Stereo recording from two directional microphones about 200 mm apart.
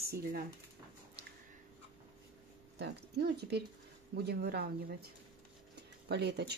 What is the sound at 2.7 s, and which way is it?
Speech, 55° right (ahead or behind).